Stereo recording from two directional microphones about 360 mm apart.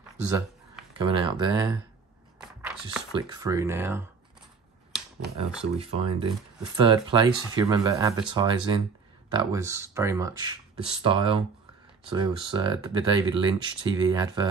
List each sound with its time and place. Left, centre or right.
0.2 s a sound: centre
1.4 s speech: centre
5.8 s speech: centre